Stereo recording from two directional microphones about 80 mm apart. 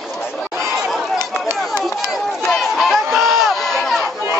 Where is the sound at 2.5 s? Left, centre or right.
Centre.